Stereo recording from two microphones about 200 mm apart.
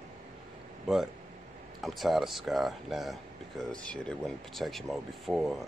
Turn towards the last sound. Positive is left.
turn(degrees=0)  # may be behind; listen again after turning